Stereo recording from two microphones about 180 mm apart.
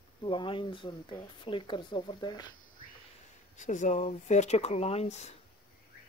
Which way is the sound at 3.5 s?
45° left (ahead or behind).